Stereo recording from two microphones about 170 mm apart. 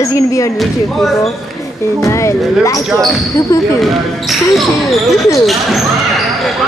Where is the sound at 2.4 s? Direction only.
Centre (ahead or behind).